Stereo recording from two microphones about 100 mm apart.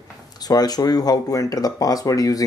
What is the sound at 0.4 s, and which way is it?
Speech, 40° left (ahead or behind).